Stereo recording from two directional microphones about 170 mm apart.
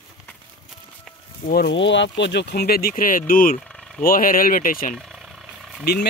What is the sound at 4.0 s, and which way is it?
Speech, 55° left (ahead or behind).